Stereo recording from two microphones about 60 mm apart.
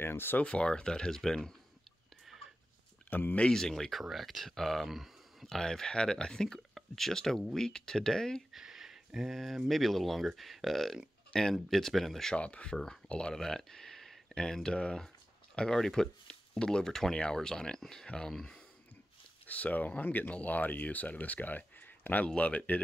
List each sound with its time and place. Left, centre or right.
0.0 s speech: left
0.4 s speech: centre
3.1 s speech: left
3.3 s speech: centre
5.5 s speech: centre
8.5 s a sound: centre
9.7 s speech: centre
12.4 s speech: centre
12.7 s speech: centre
19.4 s speech: left